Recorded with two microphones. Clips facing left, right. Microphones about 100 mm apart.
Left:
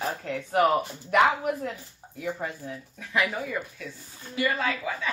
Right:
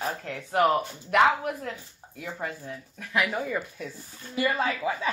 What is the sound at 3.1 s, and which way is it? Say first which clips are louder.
Speech: even; 5° right (ahead or behind).